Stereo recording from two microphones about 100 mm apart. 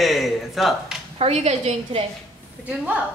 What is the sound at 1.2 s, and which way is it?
Speech, 90° right.